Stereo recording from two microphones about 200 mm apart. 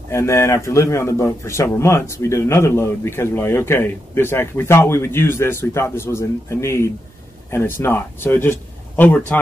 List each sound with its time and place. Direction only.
0.1 s a man's voice: 15° left (ahead or behind)